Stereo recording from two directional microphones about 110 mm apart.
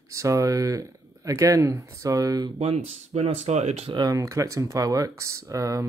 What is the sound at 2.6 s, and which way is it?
Speech, 75° right (ahead or behind).